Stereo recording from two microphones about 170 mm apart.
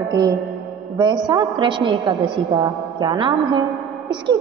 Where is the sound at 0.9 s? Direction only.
25° right (ahead or behind).